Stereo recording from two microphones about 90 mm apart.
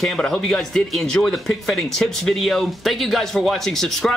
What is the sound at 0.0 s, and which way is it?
Speech, 5° left (ahead or behind).